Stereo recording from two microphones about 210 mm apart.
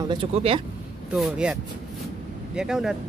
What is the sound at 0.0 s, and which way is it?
Speech, 25° right (ahead or behind).